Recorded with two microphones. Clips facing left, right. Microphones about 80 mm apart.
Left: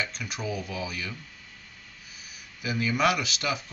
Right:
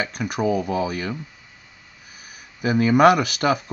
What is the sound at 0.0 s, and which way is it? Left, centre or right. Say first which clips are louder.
Speech: right 10 dB; right.